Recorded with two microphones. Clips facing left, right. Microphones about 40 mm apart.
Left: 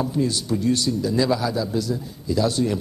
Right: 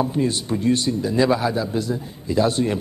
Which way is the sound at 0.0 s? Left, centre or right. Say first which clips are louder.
Right 2 dB; right.